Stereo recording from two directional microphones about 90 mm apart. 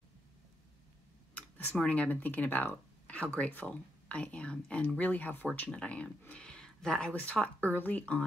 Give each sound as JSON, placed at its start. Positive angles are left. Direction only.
{"t": 1.7, "sound": "speech", "side_deg": 10}
{"t": 7.4, "sound": "speech", "side_deg": 20}